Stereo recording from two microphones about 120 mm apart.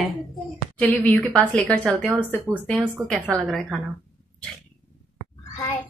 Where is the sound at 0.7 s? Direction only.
10° left (ahead or behind).